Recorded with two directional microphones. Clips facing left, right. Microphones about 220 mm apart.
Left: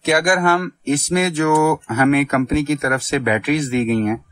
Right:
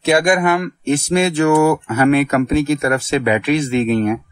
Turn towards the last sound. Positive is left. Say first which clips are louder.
# right 2 dB
turn(degrees=-25)  # may be behind; listen again after turning